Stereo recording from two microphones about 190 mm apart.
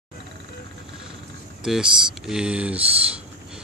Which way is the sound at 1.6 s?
5° right (ahead or behind).